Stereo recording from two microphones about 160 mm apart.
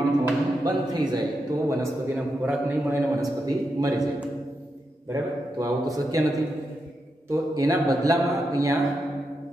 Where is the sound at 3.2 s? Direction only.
20° right (ahead or behind).